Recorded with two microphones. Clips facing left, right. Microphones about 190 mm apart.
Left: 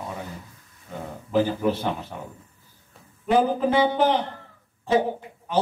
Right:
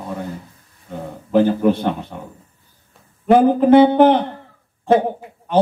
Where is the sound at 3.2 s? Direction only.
55° right (ahead or behind).